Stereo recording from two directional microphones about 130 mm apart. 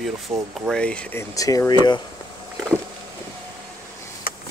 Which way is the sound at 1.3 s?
25° left (ahead or behind).